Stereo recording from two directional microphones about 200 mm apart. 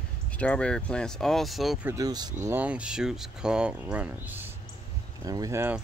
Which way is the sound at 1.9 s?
20° right (ahead or behind).